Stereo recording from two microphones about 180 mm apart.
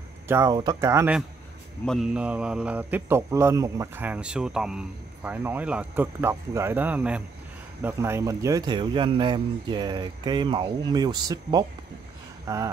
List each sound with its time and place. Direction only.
0.3 s speech: 15° right (ahead or behind)
1.9 s speech: centre (ahead or behind); by 11.6 s 20° right (ahead or behind)